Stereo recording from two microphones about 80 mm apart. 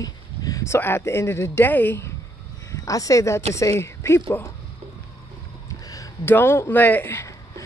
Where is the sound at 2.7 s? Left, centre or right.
Left.